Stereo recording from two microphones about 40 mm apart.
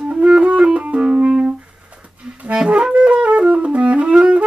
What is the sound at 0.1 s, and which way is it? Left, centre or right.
Music, right.